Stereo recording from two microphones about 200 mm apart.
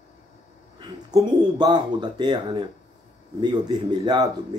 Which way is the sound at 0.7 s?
20° right (ahead or behind).